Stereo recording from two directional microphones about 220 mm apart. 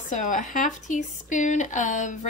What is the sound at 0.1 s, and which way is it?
Speech, 35° left (ahead or behind).